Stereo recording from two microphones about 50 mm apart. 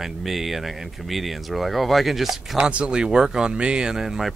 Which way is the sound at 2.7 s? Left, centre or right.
Centre.